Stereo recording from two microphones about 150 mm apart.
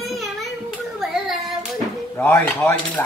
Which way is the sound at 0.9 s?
Centre (ahead or behind).